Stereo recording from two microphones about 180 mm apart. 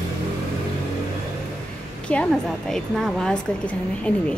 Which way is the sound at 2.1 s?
5° left (ahead or behind).